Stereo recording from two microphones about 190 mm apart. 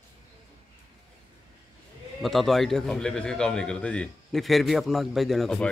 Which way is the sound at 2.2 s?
Centre (ahead or behind).